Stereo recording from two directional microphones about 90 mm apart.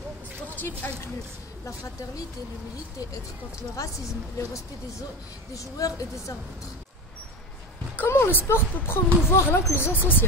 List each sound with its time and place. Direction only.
0.6 s speech: 25° left (ahead or behind)
3.7 s a woman's voice: 35° left (ahead or behind)
7.9 s speech: 25° left (ahead or behind)